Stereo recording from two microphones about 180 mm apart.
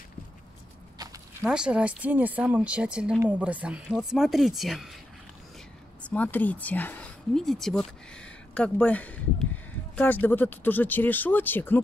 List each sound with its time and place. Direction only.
0.9 s walk: 20° right (ahead or behind)
1.4 s speech: 5° right (ahead or behind)
6.0 s speech: 10° left (ahead or behind)